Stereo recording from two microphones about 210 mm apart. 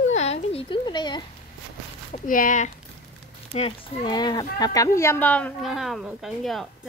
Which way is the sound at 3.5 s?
25° left (ahead or behind).